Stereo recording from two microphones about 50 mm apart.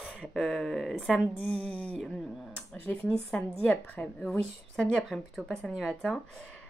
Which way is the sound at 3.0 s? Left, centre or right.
Left.